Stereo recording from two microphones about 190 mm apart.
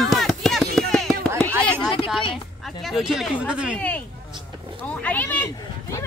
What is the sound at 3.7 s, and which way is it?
Speech, 10° left (ahead or behind).